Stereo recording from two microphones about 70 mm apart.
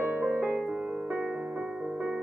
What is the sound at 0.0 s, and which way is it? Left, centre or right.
Music, right.